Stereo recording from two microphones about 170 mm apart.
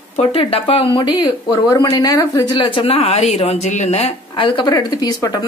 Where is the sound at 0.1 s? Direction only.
35° left (ahead or behind).